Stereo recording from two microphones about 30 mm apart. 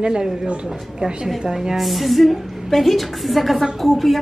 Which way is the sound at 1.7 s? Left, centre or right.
Centre.